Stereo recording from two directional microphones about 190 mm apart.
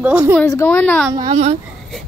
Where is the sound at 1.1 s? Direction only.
20° right (ahead or behind).